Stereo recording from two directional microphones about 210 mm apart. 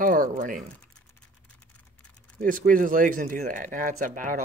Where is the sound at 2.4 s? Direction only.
40° right (ahead or behind).